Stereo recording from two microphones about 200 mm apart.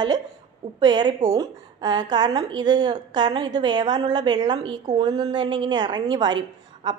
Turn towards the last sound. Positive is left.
turn(degrees=-20)  # may be behind; listen again after turning